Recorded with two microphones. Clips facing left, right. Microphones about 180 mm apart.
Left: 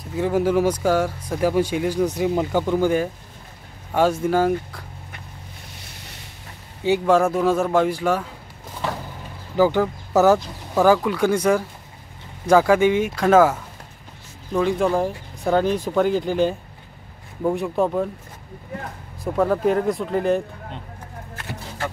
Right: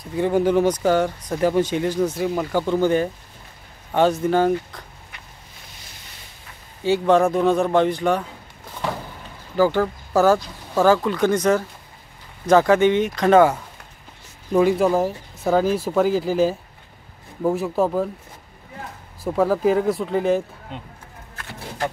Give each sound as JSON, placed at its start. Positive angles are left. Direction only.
{"t": 0.0, "sound": "speech", "side_deg": 5}
{"t": 6.8, "sound": "speech", "side_deg": 10}
{"t": 9.6, "sound": "speech", "side_deg": 15}
{"t": 19.2, "sound": "speech", "side_deg": 0}